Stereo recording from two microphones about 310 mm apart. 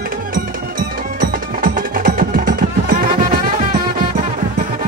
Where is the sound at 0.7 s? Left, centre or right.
Right.